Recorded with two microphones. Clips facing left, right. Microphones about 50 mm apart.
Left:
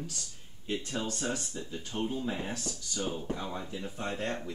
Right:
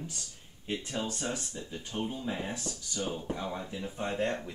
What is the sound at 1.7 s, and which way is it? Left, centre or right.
Speech, centre.